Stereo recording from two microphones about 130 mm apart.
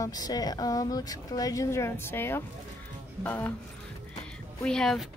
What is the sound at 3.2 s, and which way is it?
Speech, 15° left (ahead or behind).